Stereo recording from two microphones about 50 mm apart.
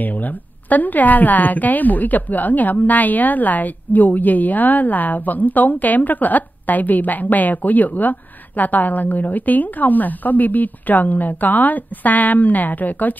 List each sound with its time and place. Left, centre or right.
0.0 s a woman's voice: left